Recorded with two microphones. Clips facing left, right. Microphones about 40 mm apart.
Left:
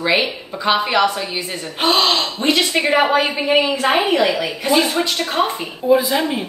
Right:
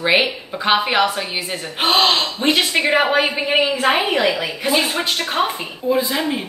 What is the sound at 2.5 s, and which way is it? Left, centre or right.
Speech, right.